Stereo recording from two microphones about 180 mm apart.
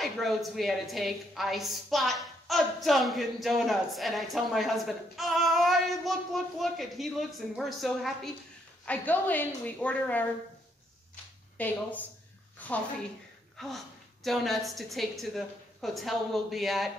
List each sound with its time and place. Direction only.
0.0 s a woman's voice: centre (ahead or behind)
11.5 s speech: 10° left (ahead or behind)
12.5 s a sound: 10° left (ahead or behind)
13.6 s a woman's voice: centre (ahead or behind)